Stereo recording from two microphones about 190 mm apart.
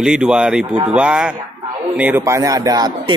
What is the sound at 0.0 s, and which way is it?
A man's voice, 5° right (ahead or behind).